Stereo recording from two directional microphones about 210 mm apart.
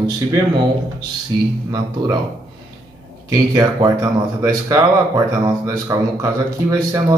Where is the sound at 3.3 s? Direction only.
20° right (ahead or behind).